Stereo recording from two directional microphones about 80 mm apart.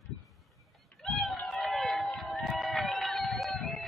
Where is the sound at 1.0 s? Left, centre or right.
Centre.